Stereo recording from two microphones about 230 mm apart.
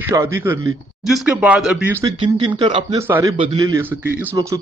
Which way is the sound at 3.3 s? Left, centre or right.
Right.